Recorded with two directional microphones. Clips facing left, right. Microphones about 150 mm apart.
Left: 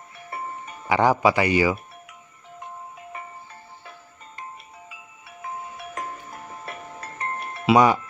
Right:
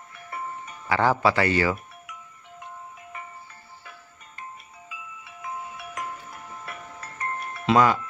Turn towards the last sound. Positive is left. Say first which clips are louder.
# left 3 dB
turn(degrees=20)  # may be behind; listen again after turning